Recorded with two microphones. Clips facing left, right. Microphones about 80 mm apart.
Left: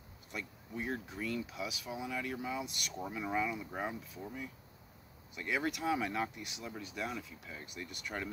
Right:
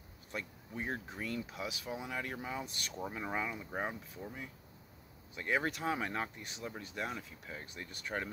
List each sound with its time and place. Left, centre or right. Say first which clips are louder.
0.3 s speech: even; right